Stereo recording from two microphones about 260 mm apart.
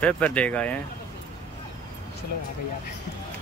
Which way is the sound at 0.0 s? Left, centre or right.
Centre.